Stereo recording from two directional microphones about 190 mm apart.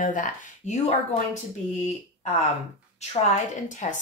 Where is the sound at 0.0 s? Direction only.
45° left (ahead or behind).